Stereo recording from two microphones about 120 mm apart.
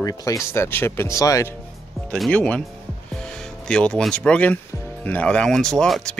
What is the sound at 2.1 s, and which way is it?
Speech, centre (ahead or behind).